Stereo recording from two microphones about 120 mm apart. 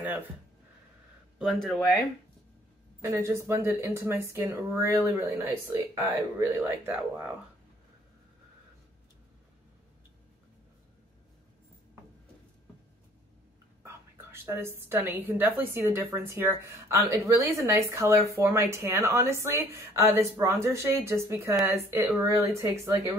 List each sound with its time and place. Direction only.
1.4 s speech: centre (ahead or behind)
3.0 s speech: 25° right (ahead or behind)
13.8 s speech: 20° right (ahead or behind)